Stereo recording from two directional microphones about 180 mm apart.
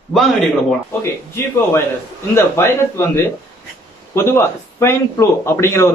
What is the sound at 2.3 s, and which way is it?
Speech, 15° left (ahead or behind).